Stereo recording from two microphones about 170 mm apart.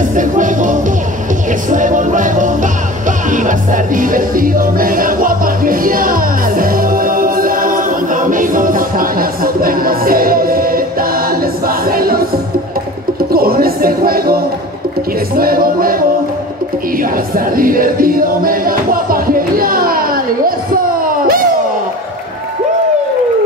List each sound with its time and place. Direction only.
0.0 s music: 50° right (ahead or behind)
13.2 s a sound: 60° right (ahead or behind)
15.3 s music: 60° right (ahead or behind)
17.0 s music: 55° right (ahead or behind)